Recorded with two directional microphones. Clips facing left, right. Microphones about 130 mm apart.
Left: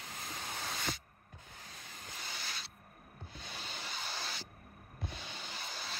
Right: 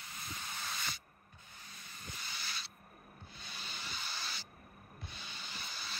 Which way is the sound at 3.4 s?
45° left (ahead or behind).